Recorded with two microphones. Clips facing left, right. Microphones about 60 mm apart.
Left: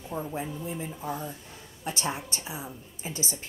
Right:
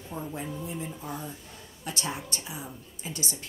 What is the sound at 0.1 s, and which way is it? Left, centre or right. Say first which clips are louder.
Speech: left 2 dB; centre.